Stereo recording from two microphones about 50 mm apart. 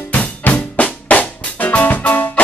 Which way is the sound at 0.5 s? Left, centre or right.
Left.